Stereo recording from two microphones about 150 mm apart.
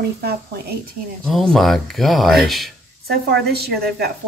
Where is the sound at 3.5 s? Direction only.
90° right.